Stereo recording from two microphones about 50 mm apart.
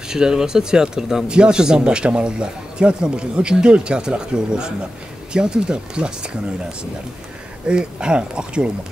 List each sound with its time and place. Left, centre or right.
0.1 s speech: centre
7.6 s speech: centre